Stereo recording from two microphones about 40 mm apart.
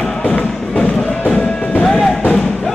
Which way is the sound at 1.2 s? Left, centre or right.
Left.